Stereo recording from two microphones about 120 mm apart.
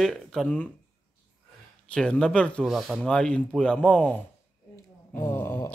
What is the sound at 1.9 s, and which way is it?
Speech, 5° left (ahead or behind).